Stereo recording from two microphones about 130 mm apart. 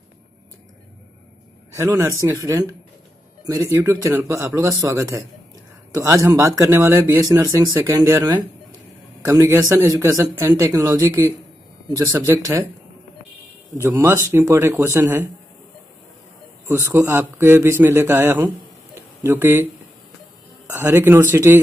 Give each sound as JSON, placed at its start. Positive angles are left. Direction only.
{"t": 1.8, "sound": "speech", "side_deg": -20}
{"t": 9.2, "sound": "speech", "side_deg": -20}
{"t": 13.8, "sound": "a man's voice", "side_deg": -20}
{"t": 16.6, "sound": "a man's voice", "side_deg": -20}
{"t": 20.7, "sound": "a man's voice", "side_deg": -15}